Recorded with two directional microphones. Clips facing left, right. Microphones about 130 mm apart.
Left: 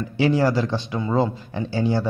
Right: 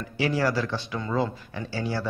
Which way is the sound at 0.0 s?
25° left (ahead or behind).